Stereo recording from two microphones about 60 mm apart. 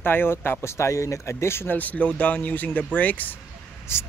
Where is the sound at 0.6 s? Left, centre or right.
Left.